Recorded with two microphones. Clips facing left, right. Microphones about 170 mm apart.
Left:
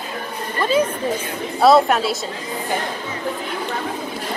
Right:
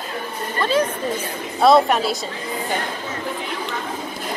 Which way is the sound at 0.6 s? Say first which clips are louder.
Left 1 dB; 10° left (ahead or behind).